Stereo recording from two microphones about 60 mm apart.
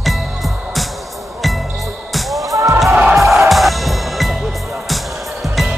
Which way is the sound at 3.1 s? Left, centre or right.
Centre.